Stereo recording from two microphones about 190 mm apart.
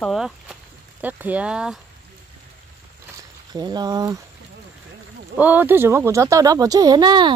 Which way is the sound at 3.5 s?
20° right (ahead or behind).